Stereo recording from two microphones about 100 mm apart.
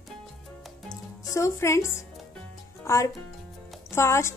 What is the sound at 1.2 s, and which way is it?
A woman's voice, 35° left (ahead or behind).